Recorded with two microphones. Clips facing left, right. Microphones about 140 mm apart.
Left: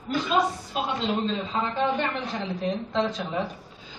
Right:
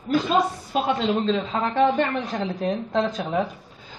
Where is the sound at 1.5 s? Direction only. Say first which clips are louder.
Right 3 dB; 60° right (ahead or behind).